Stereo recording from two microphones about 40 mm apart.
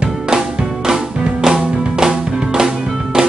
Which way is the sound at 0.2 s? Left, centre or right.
Centre.